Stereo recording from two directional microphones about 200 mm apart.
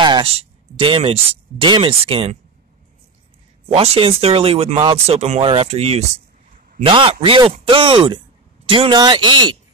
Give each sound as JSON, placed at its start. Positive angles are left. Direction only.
{"t": 0.0, "sound": "speech", "side_deg": -25}
{"t": 3.6, "sound": "speech", "side_deg": -30}